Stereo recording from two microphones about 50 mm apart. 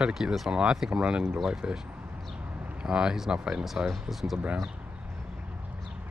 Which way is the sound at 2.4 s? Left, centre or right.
Right.